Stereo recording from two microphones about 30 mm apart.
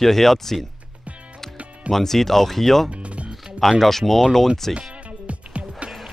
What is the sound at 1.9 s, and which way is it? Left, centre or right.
Speech, centre.